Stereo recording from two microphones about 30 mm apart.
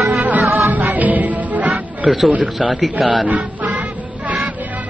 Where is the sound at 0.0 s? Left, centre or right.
Right.